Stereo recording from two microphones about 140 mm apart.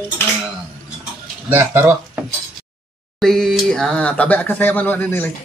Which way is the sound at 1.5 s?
15° right (ahead or behind).